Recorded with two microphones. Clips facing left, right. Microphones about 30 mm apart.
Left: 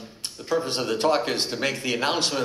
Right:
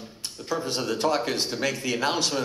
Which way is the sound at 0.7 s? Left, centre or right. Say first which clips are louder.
Left 1 dB; left.